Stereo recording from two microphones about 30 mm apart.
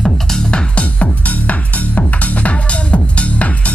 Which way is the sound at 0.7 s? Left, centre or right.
Left.